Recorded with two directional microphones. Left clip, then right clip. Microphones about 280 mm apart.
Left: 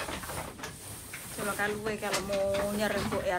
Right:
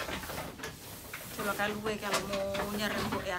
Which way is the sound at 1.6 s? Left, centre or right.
Centre.